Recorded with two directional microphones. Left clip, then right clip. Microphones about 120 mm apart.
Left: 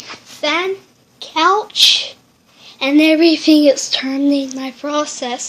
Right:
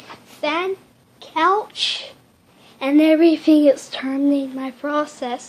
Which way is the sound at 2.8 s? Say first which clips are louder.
Left 3 dB; 10° left (ahead or behind).